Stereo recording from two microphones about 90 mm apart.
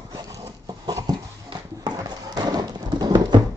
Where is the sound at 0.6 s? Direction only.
50° right (ahead or behind).